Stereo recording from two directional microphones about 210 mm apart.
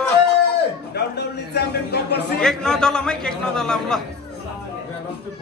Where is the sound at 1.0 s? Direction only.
50° left (ahead or behind).